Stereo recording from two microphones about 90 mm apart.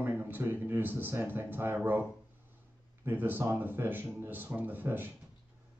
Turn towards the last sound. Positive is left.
turn(degrees=-20)  # may be behind; listen again after turning